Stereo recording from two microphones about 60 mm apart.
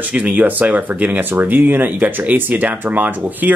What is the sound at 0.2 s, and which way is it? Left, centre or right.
Speech, right.